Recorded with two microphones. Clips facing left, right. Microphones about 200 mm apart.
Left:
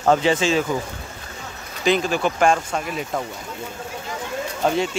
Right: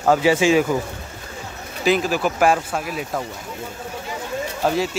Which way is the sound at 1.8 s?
5° right (ahead or behind).